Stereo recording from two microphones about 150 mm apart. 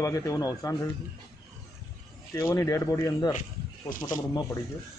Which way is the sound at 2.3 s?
20° left (ahead or behind).